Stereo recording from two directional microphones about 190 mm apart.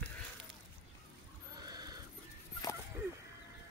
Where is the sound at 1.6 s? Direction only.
20° right (ahead or behind).